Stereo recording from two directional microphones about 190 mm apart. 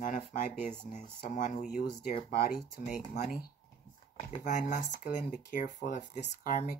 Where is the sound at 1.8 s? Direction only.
25° left (ahead or behind).